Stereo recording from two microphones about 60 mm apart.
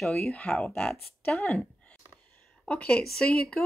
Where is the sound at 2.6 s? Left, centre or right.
Centre.